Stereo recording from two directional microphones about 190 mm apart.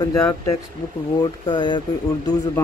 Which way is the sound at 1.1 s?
25° left (ahead or behind).